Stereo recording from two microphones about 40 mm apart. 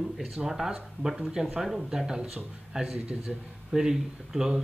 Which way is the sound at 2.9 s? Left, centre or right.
Right.